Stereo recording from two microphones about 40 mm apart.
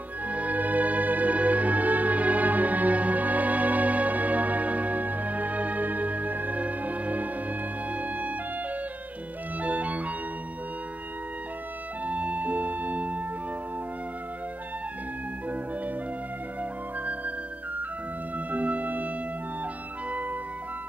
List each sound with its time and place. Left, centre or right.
0.3 s music: right
9.6 s organ: right
12.0 s organ: right
17.0 s flute: right
18.5 s music: right